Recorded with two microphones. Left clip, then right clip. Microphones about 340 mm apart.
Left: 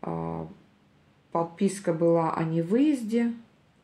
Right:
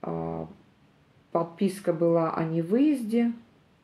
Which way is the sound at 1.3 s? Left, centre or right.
Left.